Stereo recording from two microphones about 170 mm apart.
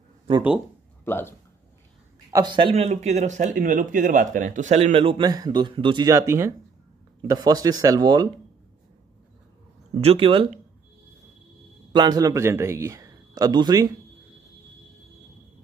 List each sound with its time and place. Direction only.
1.0 s speech: 10° left (ahead or behind)
2.3 s speech: 25° right (ahead or behind)
9.9 s speech: 35° right (ahead or behind)
11.9 s a man's voice: 25° right (ahead or behind)